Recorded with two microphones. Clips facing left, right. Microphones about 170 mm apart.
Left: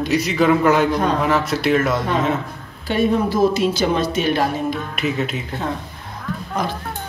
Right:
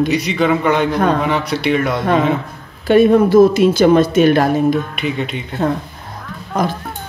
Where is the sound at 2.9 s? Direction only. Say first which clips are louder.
Right 9 dB; 55° right (ahead or behind).